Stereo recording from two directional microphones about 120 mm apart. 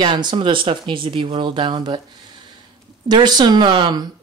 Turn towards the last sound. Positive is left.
turn(degrees=-40)  # may be behind; listen again after turning